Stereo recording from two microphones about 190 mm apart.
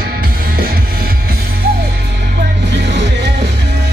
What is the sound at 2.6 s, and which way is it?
Music, 65° right (ahead or behind).